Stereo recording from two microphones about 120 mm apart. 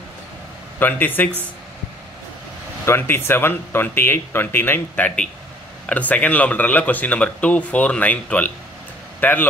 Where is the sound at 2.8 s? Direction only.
20° left (ahead or behind).